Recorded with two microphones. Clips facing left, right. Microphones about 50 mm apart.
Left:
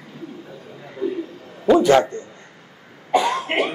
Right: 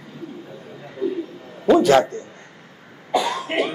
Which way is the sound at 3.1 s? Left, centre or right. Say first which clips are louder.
Left 2 dB; left.